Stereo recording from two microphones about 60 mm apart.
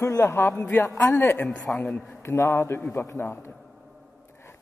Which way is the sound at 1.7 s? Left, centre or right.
Left.